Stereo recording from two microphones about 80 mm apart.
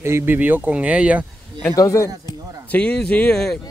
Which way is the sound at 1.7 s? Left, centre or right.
Left.